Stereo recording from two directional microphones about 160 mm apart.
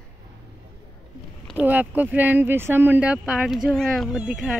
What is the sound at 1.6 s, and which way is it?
Speech, 10° right (ahead or behind).